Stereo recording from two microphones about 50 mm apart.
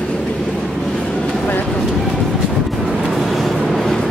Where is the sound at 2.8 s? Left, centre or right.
Centre.